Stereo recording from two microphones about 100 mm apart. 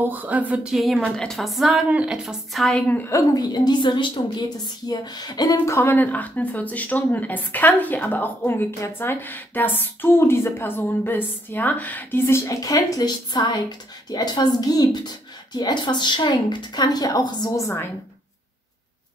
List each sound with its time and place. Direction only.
0.0 s a sound: 15° right (ahead or behind)
0.7 s a woman's voice: centre (ahead or behind)
2.7 s a woman's voice: 15° left (ahead or behind)
3.1 s speech: 35° left (ahead or behind)
5.8 s speech: 20° left (ahead or behind)
12.4 s speech: 35° left (ahead or behind)
17.6 s speech: 30° left (ahead or behind)